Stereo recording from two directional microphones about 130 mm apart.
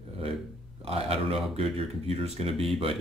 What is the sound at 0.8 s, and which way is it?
Speech, 50° right (ahead or behind).